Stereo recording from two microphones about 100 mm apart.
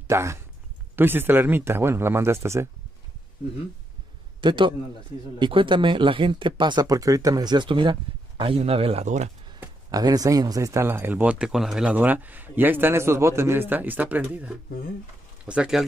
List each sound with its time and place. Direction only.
0.1 s speech: 30° right (ahead or behind)
4.4 s a man's voice: 55° right (ahead or behind); by 9.3 s 80° right
9.8 s speech: 40° right (ahead or behind); by 15.8 s 10° right (ahead or behind)